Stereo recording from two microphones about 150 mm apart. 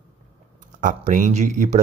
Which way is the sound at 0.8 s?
60° right (ahead or behind).